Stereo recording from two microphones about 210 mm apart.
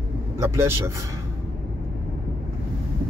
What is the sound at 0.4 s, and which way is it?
Speech, 10° right (ahead or behind).